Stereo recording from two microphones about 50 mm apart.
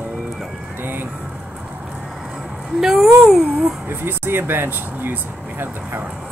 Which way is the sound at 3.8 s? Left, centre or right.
Right.